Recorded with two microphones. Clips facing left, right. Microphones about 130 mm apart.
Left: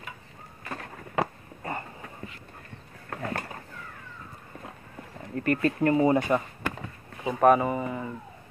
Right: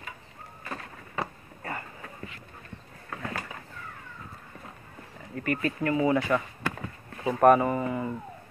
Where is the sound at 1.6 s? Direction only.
30° left (ahead or behind).